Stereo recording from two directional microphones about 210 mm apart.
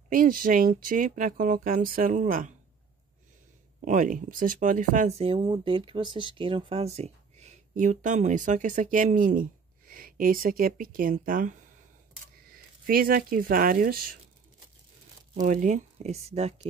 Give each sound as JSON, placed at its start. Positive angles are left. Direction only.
{"t": 0.1, "sound": "speech", "side_deg": -40}
{"t": 3.8, "sound": "speech", "side_deg": -40}
{"t": 12.8, "sound": "speech", "side_deg": -45}
{"t": 15.3, "sound": "speech", "side_deg": -35}